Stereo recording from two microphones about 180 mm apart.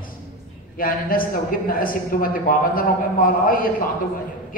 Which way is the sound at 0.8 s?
55° left (ahead or behind).